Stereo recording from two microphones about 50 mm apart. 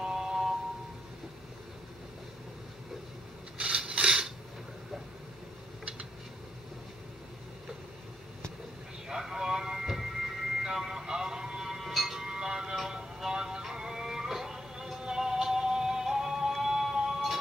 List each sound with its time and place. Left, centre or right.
0.0 s vehicle: centre
3.5 s rub: centre
9.1 s vehicle: centre
12.7 s music: centre